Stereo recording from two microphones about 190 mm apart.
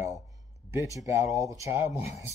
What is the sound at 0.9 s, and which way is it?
Speech, 15° right (ahead or behind).